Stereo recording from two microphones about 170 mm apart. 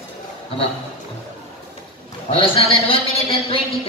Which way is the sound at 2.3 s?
35° left (ahead or behind).